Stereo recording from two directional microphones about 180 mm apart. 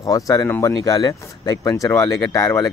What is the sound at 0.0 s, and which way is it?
Speech, 20° left (ahead or behind).